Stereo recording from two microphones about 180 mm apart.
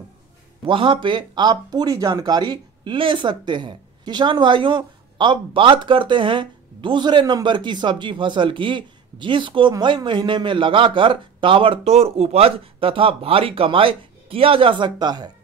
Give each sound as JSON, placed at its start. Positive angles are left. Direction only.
{"t": 0.7, "sound": "speech", "side_deg": -30}